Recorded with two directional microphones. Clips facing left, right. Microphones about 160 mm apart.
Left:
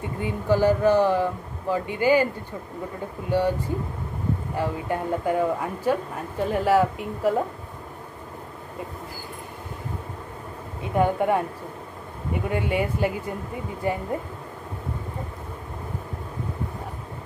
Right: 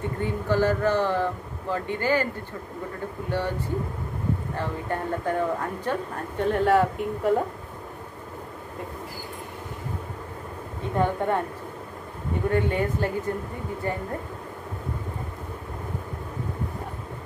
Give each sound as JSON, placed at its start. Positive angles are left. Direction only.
{"t": 0.2, "sound": "speech", "side_deg": 15}
{"t": 3.3, "sound": "speech", "side_deg": 15}
{"t": 11.0, "sound": "speech", "side_deg": 10}
{"t": 12.4, "sound": "speech", "side_deg": 10}